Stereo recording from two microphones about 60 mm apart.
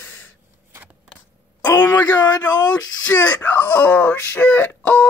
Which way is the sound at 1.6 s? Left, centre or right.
Left.